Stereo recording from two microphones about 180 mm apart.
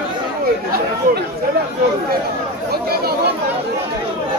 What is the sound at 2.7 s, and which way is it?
Chatter, 60° right (ahead or behind).